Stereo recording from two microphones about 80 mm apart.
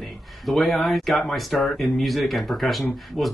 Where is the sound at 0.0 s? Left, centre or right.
Centre.